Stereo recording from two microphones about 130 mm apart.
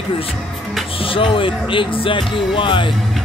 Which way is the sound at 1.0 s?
45° left (ahead or behind).